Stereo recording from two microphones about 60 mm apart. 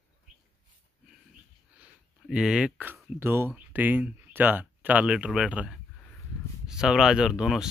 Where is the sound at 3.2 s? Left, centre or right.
Right.